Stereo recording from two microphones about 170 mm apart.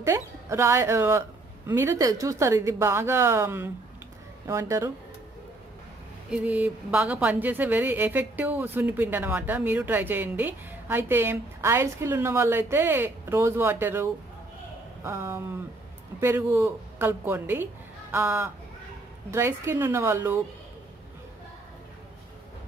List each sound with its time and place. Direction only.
0.0 s speech: 15° right (ahead or behind)
6.3 s speech: 10° right (ahead or behind)
15.0 s speech: 15° right (ahead or behind)